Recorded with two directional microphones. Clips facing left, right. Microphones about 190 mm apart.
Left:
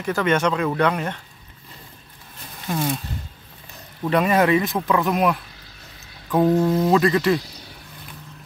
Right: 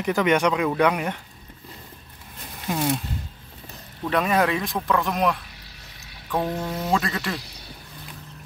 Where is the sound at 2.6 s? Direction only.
5° right (ahead or behind).